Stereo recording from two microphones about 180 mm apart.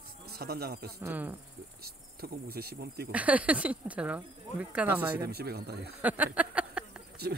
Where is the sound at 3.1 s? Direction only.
10° right (ahead or behind).